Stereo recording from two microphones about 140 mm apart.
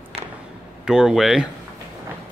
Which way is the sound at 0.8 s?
5° right (ahead or behind).